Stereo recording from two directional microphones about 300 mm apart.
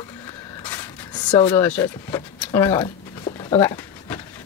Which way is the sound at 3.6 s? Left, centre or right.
Centre.